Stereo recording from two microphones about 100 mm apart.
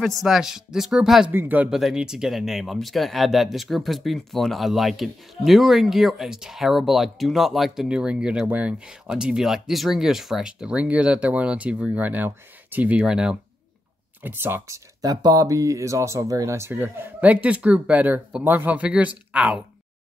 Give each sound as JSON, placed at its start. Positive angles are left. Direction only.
{"t": 0.2, "sound": "speech", "side_deg": -5}
{"t": 1.3, "sound": "speech", "side_deg": -20}
{"t": 1.7, "sound": "speech", "side_deg": -5}
{"t": 14.2, "sound": "speech", "side_deg": -20}
{"t": 15.0, "sound": "speech", "side_deg": -40}